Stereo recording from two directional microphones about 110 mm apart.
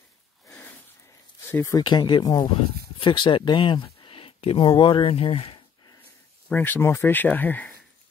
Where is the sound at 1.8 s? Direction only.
45° left (ahead or behind).